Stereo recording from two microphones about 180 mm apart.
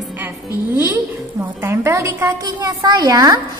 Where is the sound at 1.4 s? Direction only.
15° right (ahead or behind).